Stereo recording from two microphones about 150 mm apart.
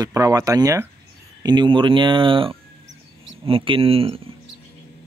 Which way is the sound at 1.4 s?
30° right (ahead or behind).